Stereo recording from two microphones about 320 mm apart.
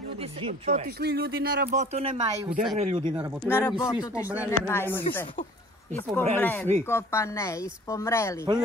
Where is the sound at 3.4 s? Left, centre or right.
Centre.